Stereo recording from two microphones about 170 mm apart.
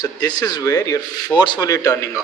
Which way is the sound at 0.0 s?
25° left (ahead or behind).